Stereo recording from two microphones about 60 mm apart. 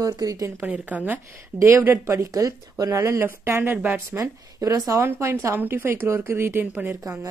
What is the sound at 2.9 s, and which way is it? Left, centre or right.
Speech, right.